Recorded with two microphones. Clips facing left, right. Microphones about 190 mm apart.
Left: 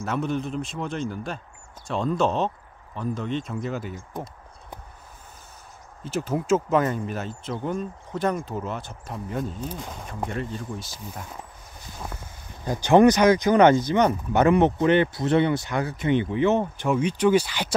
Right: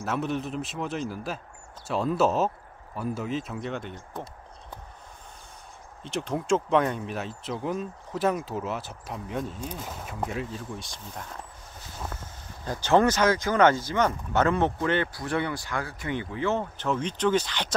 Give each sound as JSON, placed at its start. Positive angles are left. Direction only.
{"t": 0.0, "sound": "speech", "side_deg": 0}
{"t": 6.0, "sound": "speech", "side_deg": 5}